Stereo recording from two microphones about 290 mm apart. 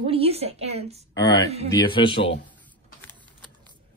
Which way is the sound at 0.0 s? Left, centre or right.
Centre.